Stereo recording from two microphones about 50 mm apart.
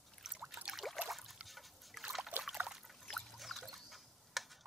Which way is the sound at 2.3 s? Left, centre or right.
Right.